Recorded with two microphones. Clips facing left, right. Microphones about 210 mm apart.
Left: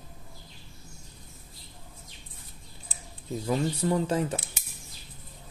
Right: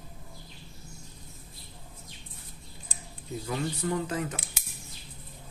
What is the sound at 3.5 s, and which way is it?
Speech, 30° left (ahead or behind).